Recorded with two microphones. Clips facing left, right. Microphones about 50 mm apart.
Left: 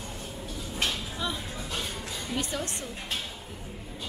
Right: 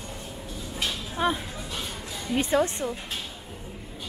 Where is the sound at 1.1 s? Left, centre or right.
Right.